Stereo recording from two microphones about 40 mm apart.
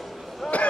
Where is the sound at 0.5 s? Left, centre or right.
Left.